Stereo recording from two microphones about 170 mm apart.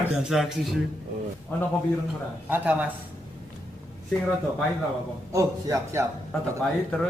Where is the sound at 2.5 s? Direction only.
10° right (ahead or behind).